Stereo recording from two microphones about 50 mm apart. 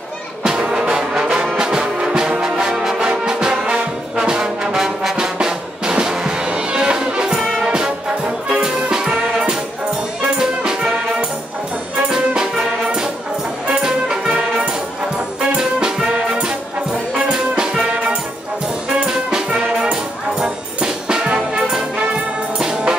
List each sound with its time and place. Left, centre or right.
0.4 s music: centre
3.1 s brass instrument: centre
7.3 s music: centre
12.1 s music: centre
15.5 s music: centre